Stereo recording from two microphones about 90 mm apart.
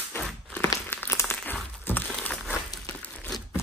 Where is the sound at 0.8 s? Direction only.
25° left (ahead or behind).